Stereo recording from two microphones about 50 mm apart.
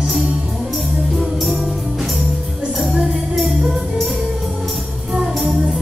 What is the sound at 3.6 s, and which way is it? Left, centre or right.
Music, right.